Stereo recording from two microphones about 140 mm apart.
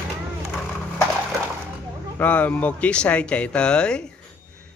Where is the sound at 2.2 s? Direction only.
10° left (ahead or behind).